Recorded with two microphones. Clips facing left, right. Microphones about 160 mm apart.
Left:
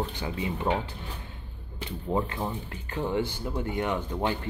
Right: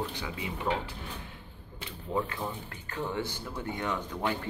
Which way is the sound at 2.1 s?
25° left (ahead or behind).